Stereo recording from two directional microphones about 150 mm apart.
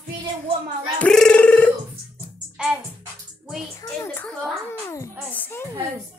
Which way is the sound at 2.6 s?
5° right (ahead or behind).